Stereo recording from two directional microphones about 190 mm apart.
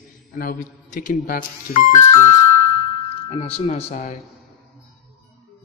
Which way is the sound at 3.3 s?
30° left (ahead or behind).